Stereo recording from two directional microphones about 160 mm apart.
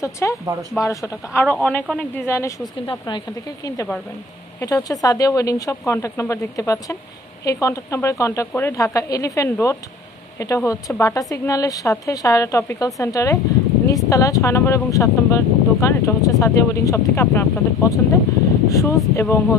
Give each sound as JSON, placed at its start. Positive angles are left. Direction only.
{"t": 0.0, "sound": "speech", "side_deg": 20}
{"t": 0.5, "sound": "speech", "side_deg": -25}
{"t": 0.7, "sound": "a woman's voice", "side_deg": 20}
{"t": 2.9, "sound": "a woman's voice", "side_deg": 30}